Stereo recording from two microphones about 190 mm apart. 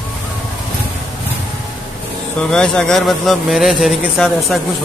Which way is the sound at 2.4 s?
5° left (ahead or behind).